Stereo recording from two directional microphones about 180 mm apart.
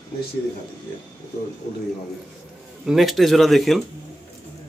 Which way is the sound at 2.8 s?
Centre (ahead or behind).